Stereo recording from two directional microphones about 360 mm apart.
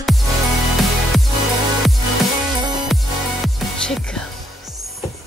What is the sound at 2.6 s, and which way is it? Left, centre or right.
Music, centre.